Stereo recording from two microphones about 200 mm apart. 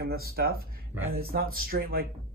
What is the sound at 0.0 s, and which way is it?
Speech, 50° right (ahead or behind).